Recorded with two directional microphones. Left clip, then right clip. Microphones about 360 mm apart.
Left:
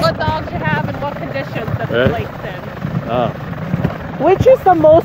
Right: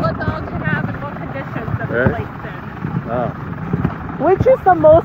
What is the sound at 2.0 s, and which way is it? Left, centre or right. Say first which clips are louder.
Speech: left 2 dB; left.